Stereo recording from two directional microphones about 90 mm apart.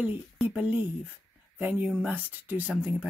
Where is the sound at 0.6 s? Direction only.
15° right (ahead or behind).